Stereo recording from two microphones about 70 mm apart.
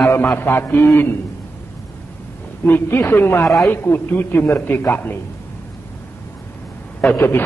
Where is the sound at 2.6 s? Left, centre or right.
Left.